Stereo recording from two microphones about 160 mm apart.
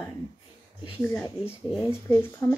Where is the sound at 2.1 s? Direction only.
15° left (ahead or behind).